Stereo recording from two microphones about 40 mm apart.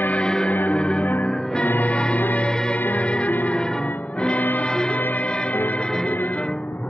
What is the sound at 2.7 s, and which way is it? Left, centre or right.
Music, left.